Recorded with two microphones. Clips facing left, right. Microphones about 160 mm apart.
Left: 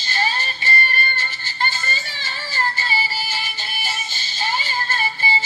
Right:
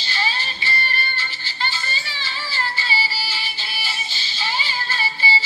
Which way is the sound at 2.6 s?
45° left (ahead or behind).